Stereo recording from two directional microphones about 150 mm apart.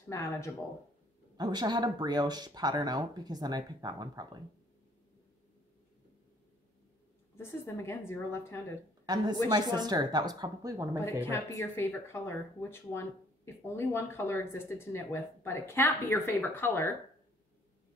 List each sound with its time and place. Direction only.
0.1 s speech: 20° left (ahead or behind)
1.3 s speech: 25° right (ahead or behind)
7.3 s speech: 15° left (ahead or behind)
9.0 s a woman's voice: 25° right (ahead or behind)
11.2 s speech: 15° left (ahead or behind)